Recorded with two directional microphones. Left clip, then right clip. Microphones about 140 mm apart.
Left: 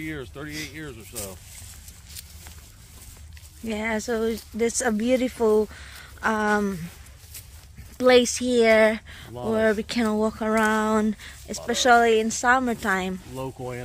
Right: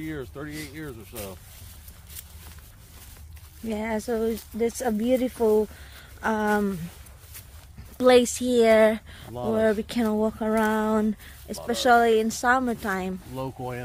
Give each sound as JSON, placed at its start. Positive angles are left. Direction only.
{"t": 0.0, "sound": "speech", "side_deg": -30}
{"t": 1.1, "sound": "speech", "side_deg": -90}
{"t": 3.6, "sound": "speech", "side_deg": -15}
{"t": 8.1, "sound": "speech", "side_deg": -20}
{"t": 12.6, "sound": "a woman's voice", "side_deg": 0}